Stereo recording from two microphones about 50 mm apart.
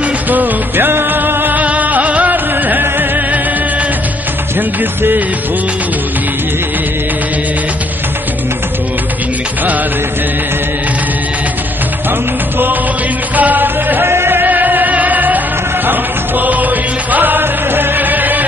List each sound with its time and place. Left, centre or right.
0.3 s music: right
4.6 s music: right
13.4 s music: right
14.0 s music: right